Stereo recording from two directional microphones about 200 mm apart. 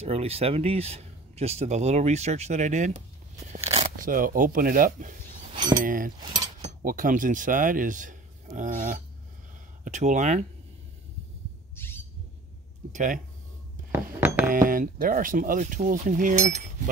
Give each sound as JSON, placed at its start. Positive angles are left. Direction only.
{"t": 0.0, "sound": "speech", "side_deg": -30}
{"t": 5.9, "sound": "keys jangling", "side_deg": -45}
{"t": 6.2, "sound": "mechanisms", "side_deg": -20}
{"t": 6.6, "sound": "speech", "side_deg": -45}
{"t": 11.7, "sound": "bird", "side_deg": 10}
{"t": 12.9, "sound": "speech", "side_deg": -40}
{"t": 13.9, "sound": "a sound", "side_deg": -5}
{"t": 14.4, "sound": "speech", "side_deg": -45}